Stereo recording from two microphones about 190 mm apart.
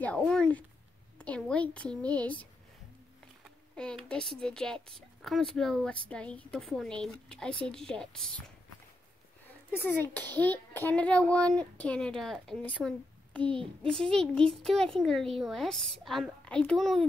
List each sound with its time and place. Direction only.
0.0 s a child's voice: 5° left (ahead or behind)
1.1 s a sound: 5° left (ahead or behind)
1.4 s speech: 5° left (ahead or behind)
3.4 s a child's voice: 5° left (ahead or behind)
9.8 s a child's voice: 10° left (ahead or behind)